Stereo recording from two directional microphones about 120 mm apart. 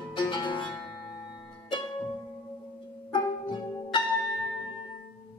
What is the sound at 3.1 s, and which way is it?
Music, 40° left (ahead or behind).